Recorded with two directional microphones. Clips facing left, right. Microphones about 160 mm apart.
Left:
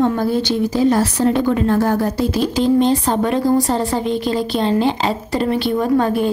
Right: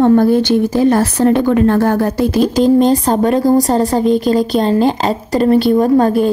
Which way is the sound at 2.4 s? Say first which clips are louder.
Right 5 dB; 40° right (ahead or behind).